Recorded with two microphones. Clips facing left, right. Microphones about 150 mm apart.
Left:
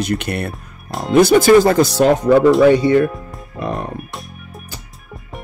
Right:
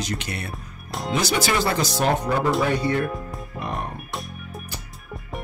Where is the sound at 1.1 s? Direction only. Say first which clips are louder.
Left 14 dB; 50° left (ahead or behind).